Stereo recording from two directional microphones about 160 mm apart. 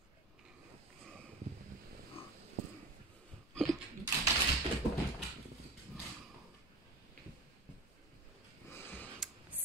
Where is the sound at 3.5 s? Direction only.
5° left (ahead or behind).